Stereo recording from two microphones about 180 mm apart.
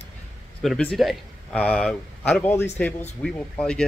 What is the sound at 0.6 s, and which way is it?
Speech, 5° left (ahead or behind).